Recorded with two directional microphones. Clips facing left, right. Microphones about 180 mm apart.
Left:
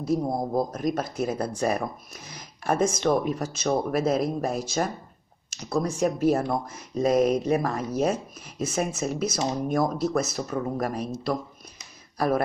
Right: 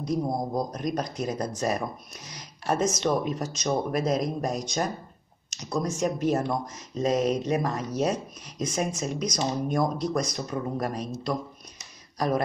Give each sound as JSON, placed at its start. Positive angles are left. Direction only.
{"t": 0.0, "sound": "speech", "side_deg": 5}
{"t": 2.2, "sound": "speech", "side_deg": 55}
{"t": 2.8, "sound": "speech", "side_deg": 10}